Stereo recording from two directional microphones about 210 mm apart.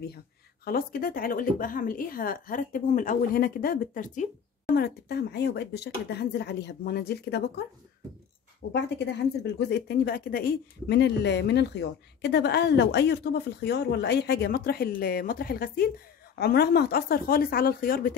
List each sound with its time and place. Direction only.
0.7 s a woman's voice: 45° left (ahead or behind)
4.7 s a woman's voice: 50° left (ahead or behind)
8.8 s a woman's voice: 55° left (ahead or behind)